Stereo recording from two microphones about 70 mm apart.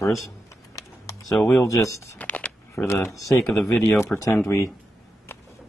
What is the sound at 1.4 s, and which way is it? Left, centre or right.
Speech, left.